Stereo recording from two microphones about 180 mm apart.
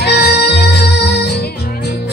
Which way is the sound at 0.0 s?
65° left (ahead or behind).